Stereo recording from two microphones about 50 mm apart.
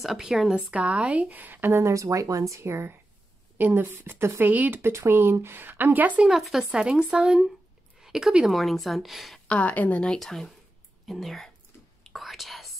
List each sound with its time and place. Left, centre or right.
0.0 s a woman's voice: centre
0.7 s speech: right
1.3 s speech: right
1.7 s speech: right
2.6 s speech: right
3.5 s speech: right
4.9 s speech: right
6.2 s a woman's voice: centre
8.5 s a woman's voice: centre
9.5 s a woman's voice: left
10.1 s a woman's voice: centre
12.0 s whispering: centre